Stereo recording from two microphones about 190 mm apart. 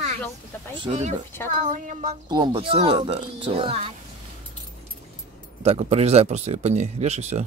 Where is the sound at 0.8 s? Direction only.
35° right (ahead or behind).